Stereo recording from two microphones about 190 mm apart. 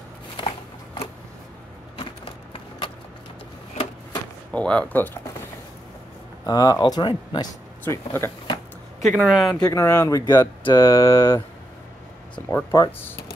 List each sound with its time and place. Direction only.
2.0 s a sound: 25° left (ahead or behind)
4.5 s speech: 5° left (ahead or behind)
6.4 s speech: 20° left (ahead or behind)
7.8 s speech: 10° left (ahead or behind)
9.0 s speech: 5° right (ahead or behind)
9.6 s speech: 15° left (ahead or behind)
12.4 s speech: 15° left (ahead or behind)